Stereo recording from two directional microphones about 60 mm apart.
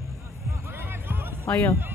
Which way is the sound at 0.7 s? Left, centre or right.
Right.